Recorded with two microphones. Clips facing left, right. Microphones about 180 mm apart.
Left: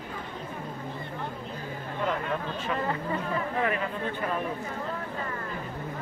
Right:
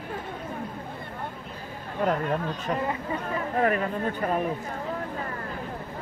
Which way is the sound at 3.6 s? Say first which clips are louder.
Right 7 dB; 45° right (ahead or behind).